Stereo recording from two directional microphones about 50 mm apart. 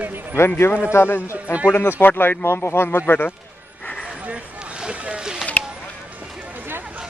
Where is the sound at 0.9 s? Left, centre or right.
Left.